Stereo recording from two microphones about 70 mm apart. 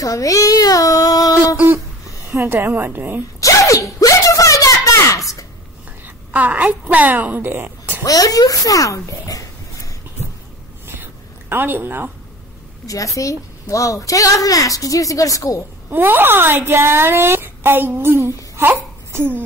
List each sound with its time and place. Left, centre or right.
0.0 s speech: left
2.4 s a woman's voice: right
3.3 s a sound: left
6.0 s a woman's voice: right
8.0 s speech: left
10.9 s a sound: right
12.8 s a woman's voice: left
15.9 s a woman's voice: right
18.6 s babbling: right